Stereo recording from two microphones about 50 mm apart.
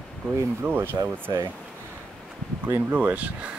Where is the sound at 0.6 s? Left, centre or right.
Right.